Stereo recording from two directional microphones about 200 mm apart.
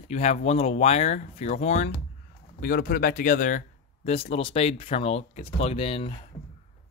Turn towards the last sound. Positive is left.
turn(degrees=30)  # may be behind; listen again after turning